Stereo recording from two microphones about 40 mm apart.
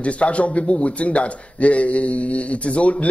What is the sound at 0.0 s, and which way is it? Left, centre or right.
Speech, left.